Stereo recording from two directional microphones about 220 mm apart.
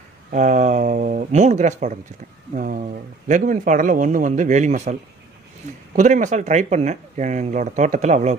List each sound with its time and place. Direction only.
0.3 s a man's voice: 35° right (ahead or behind)
5.9 s a man's voice: 35° right (ahead or behind)